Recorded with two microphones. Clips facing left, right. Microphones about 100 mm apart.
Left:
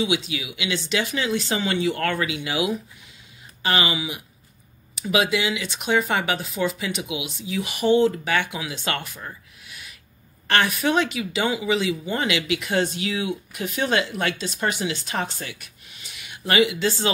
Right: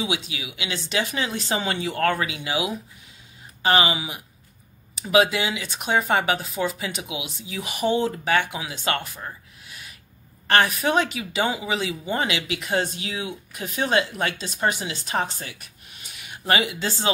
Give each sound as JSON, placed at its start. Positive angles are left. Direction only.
{"t": 0.0, "sound": "speech", "side_deg": -35}